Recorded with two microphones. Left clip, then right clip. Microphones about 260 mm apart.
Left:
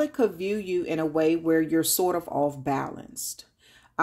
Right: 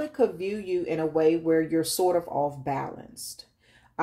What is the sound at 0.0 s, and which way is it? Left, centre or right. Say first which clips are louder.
Speech: left 1 dB; left.